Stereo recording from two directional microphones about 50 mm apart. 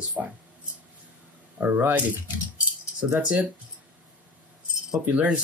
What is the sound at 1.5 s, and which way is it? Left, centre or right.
Speech, right.